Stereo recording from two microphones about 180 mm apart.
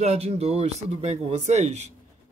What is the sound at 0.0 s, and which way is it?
Speech, 35° right (ahead or behind).